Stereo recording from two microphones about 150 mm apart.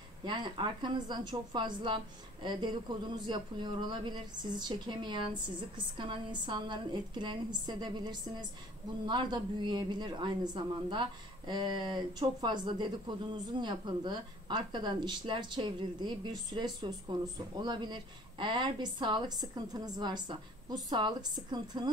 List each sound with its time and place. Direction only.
0.2 s a woman's voice: 30° right (ahead or behind)